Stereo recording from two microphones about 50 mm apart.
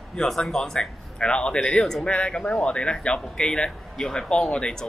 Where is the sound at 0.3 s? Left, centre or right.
Centre.